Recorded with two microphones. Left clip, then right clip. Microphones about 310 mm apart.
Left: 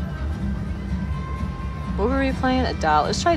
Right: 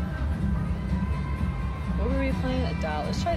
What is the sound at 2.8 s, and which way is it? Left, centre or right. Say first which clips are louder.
Speech: left 11 dB; left.